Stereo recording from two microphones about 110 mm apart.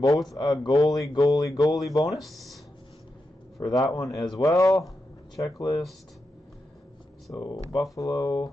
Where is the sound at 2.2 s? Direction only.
Centre (ahead or behind).